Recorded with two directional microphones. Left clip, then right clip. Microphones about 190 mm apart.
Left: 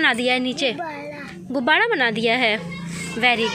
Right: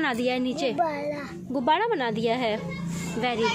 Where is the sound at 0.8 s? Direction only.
60° right (ahead or behind).